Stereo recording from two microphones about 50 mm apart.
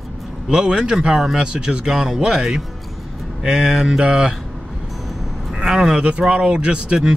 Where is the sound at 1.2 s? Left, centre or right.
Centre.